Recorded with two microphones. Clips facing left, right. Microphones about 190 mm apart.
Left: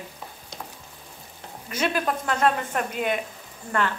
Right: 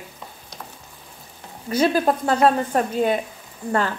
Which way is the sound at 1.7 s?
35° right (ahead or behind).